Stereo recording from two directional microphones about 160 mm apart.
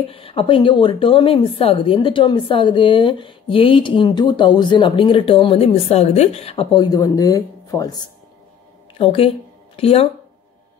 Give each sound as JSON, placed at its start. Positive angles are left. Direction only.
{"t": 0.1, "sound": "a woman's voice", "side_deg": 35}
{"t": 8.9, "sound": "speech", "side_deg": 35}